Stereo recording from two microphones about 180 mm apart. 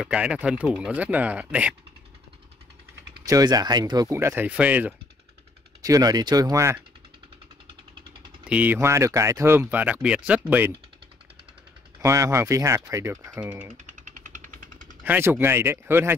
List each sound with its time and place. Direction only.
0.0 s speech: 5° right (ahead or behind)
3.3 s speech: 20° right (ahead or behind)
5.8 s speech: 20° right (ahead or behind)
8.5 s speech: 10° right (ahead or behind)
12.0 s speech: 15° right (ahead or behind)
13.8 s jackhammer: 45° right (ahead or behind)
15.0 s speech: 10° right (ahead or behind)